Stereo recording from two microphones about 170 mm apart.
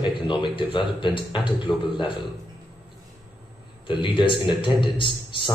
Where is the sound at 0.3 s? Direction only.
30° left (ahead or behind).